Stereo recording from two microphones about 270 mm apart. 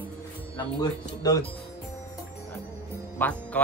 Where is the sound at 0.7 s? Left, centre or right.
Centre.